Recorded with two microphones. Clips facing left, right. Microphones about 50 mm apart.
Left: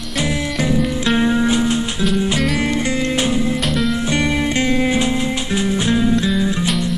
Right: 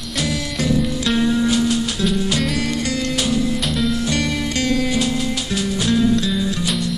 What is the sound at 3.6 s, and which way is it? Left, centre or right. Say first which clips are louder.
Music: left 2 dB; centre.